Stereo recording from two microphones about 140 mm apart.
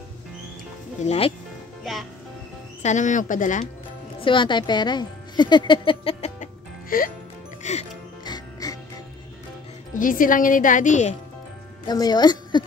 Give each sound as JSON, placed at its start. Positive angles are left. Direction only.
{"t": 1.0, "sound": "speech", "side_deg": 45}
{"t": 1.8, "sound": "speech", "side_deg": 0}
{"t": 2.8, "sound": "speech", "side_deg": 60}
{"t": 4.2, "sound": "speech", "side_deg": 35}
{"t": 6.4, "sound": "music", "side_deg": 90}
{"t": 7.6, "sound": "speech", "side_deg": 55}
{"t": 8.3, "sound": "music", "side_deg": 25}
{"t": 9.9, "sound": "a woman's voice", "side_deg": 75}
{"t": 11.9, "sound": "a woman's voice", "side_deg": 30}